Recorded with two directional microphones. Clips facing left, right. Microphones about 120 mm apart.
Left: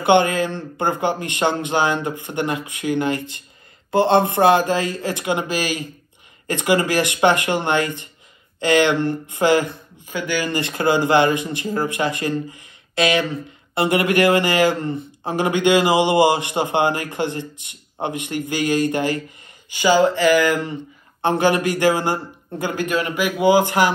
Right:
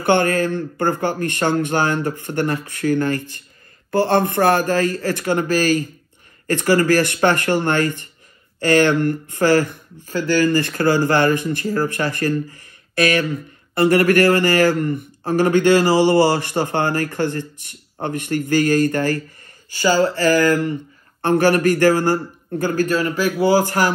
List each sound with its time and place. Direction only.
0.3 s speech: 20° left (ahead or behind)